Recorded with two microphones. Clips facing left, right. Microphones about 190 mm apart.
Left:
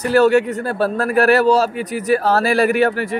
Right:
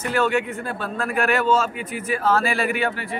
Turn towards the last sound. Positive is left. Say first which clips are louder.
# left 8 dB
turn(degrees=40)  # may be behind; listen again after turning